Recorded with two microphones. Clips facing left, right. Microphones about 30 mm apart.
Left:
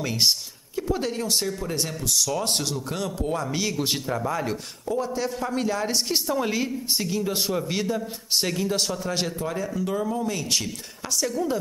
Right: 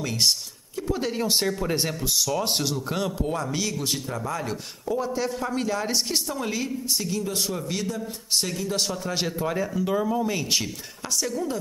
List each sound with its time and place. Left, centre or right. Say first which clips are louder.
0.0 s speech: left 1 dB; centre
0.7 s a sound: left 1 dB; centre
1.1 s speech: right 2 dB; centre
2.2 s speech: right 1 dB; centre
3.7 s speech: left 3 dB; left
4.8 s speech: even; centre; by 8.6 s left
8.6 s speech: left 1 dB; centre
9.4 s speech: right 2 dB; centre
11.1 s speech: left 2 dB; centre